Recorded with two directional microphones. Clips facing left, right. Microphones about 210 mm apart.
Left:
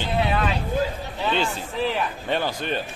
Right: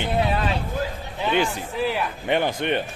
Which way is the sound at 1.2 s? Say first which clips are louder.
Right 2 dB; 15° right (ahead or behind).